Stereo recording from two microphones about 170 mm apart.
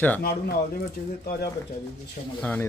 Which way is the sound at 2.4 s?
10° left (ahead or behind).